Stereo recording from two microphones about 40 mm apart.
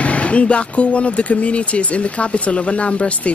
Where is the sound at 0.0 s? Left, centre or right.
Left.